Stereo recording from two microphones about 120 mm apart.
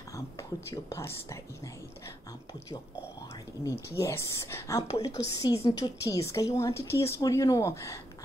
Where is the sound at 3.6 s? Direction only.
25° left (ahead or behind).